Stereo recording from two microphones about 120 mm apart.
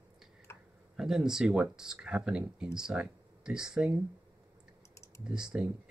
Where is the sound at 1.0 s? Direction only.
5° right (ahead or behind).